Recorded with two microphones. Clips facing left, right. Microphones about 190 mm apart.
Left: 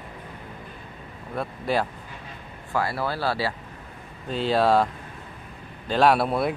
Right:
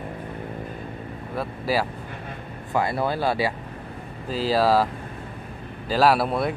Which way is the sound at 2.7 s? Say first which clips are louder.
Right 3 dB; 20° right (ahead or behind).